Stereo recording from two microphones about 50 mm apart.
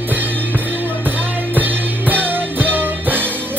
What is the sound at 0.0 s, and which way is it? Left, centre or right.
Music, right.